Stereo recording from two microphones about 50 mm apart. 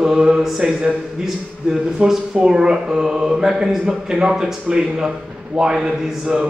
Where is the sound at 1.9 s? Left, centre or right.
Centre.